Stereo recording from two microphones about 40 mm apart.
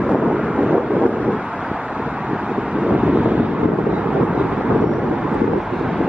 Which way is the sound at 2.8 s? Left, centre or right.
Right.